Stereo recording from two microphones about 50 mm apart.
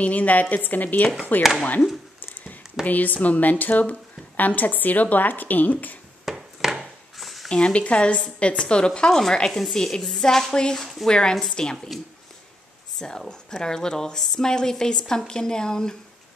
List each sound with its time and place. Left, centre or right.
0.0 s speech: left
2.9 s speech: left
6.2 s a sound: centre
7.4 s a woman's voice: centre
13.0 s speech: centre